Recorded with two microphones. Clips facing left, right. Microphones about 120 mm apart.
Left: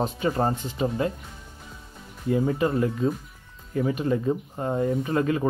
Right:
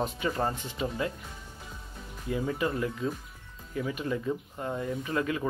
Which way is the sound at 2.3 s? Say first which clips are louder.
Left 7 dB; 40° left (ahead or behind).